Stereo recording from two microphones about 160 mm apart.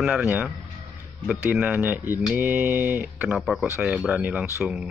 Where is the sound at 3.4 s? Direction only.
Centre (ahead or behind).